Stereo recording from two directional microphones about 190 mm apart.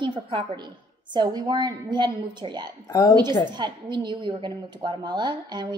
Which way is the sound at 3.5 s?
25° right (ahead or behind).